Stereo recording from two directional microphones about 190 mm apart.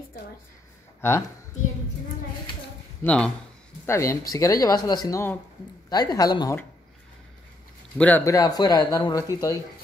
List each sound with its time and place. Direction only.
3.0 s speech: 5° left (ahead or behind)
8.0 s speech: 10° left (ahead or behind)